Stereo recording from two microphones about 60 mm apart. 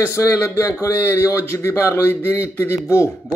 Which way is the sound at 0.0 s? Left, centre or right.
Left.